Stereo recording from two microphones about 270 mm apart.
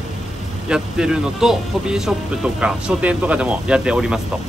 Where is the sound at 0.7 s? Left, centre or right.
Centre.